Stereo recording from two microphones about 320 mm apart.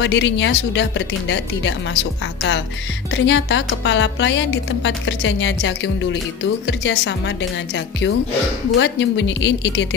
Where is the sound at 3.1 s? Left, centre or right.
Left.